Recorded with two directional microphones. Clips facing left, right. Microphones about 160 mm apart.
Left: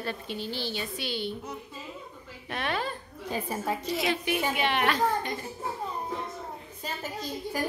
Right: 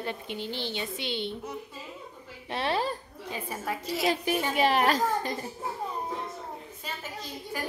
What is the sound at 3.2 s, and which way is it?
Speech, 35° left (ahead or behind).